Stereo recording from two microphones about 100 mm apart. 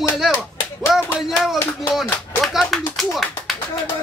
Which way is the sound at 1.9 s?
Centre (ahead or behind).